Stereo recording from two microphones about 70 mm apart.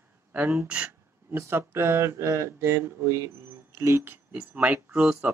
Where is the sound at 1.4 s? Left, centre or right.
Right.